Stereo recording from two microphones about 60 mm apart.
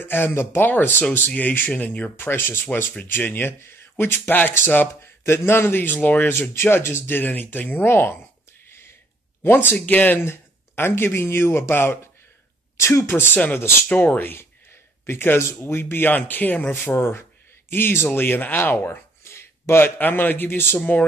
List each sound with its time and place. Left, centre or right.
0.0 s speech: left
7.2 s speech: left
9.4 s speech: left
13.1 s speech: left
13.8 s speech: left
14.2 s speech: left
16.8 s a man's voice: left